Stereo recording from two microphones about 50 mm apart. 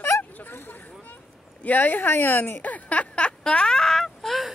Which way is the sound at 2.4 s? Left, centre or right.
Left.